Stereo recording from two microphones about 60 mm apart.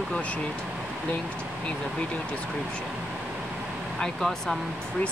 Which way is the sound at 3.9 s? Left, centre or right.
Centre.